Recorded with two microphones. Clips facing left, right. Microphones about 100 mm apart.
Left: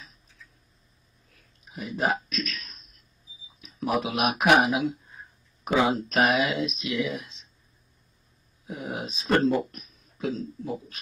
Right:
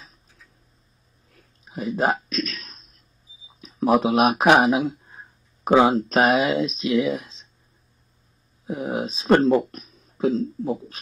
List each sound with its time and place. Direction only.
1.6 s speech: 35° right (ahead or behind)
8.6 s speech: 35° right (ahead or behind)